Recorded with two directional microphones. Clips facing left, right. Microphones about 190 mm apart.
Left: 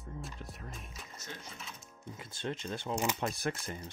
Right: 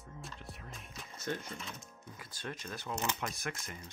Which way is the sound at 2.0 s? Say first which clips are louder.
Left 6 dB; 25° left (ahead or behind).